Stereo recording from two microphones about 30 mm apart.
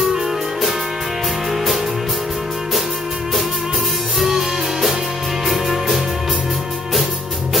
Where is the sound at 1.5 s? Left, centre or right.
Centre.